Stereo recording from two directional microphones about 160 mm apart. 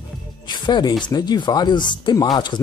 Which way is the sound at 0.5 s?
30° left (ahead or behind).